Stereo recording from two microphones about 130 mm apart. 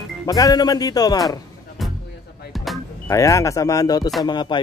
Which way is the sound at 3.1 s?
25° left (ahead or behind).